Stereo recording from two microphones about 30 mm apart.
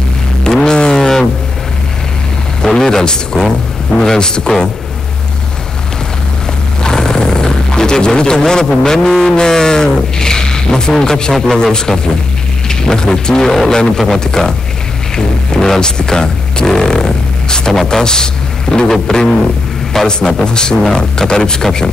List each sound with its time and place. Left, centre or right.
0.4 s vehicle: left
2.8 s a sound: left
6.8 s a sound: centre
9.4 s a man's voice: left
13.9 s speech: centre
15.1 s music: centre
17.8 s a man's voice: left